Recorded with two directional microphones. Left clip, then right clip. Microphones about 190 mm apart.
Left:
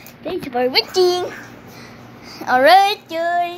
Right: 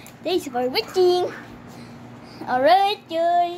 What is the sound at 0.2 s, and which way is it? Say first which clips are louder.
Speech: left 3 dB; 15° right (ahead or behind).